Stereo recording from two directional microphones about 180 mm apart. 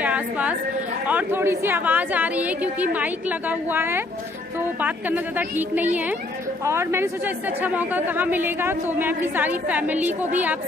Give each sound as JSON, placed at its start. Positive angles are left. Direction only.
{"t": 0.0, "sound": "a woman's voice", "side_deg": -5}